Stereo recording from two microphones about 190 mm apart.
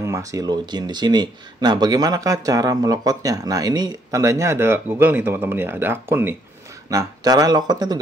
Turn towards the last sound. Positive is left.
turn(degrees=-20)  # may be behind; listen again after turning